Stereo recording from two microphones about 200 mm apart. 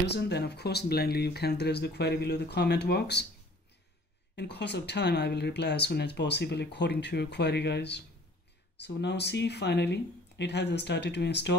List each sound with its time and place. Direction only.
0.0 s speech: 55° left (ahead or behind)
4.4 s speech: 55° left (ahead or behind)